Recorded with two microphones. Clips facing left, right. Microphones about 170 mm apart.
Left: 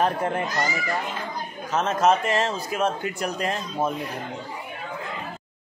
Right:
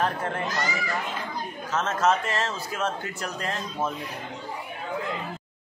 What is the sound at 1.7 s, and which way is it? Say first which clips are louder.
Speech: left 3 dB; 15° left (ahead or behind).